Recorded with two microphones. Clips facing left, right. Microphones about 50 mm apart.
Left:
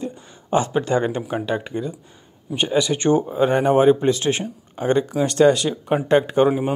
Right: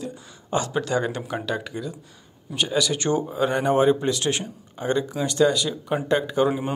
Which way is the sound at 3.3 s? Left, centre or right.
Left.